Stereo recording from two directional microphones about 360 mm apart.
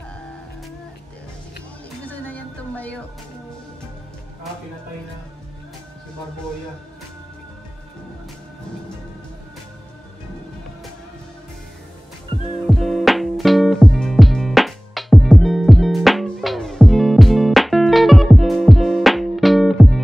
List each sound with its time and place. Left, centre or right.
2.0 s music: centre
12.3 s music: centre
12.6 s music: centre